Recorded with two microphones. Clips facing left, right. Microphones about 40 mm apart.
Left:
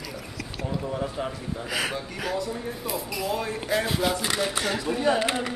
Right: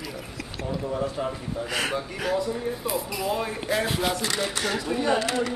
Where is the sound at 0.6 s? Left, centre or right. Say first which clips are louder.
Right 2 dB; centre.